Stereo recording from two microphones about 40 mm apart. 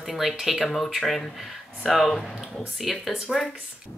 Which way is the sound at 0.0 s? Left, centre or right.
Centre.